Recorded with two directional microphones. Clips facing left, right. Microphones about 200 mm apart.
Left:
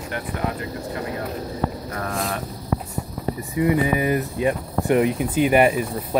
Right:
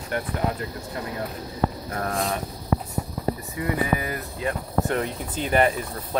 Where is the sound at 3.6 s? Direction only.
15° left (ahead or behind).